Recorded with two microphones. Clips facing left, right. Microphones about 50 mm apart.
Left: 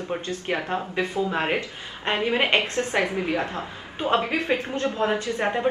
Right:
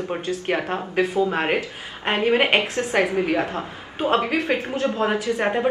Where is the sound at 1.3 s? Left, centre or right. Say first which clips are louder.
Right 2 dB; centre.